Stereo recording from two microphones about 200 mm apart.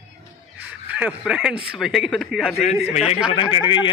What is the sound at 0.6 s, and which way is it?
Speech, 5° right (ahead or behind).